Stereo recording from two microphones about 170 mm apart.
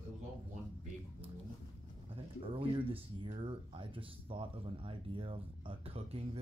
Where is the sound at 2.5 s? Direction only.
30° right (ahead or behind).